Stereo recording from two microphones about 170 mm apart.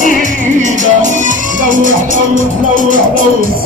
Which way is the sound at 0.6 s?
45° right (ahead or behind).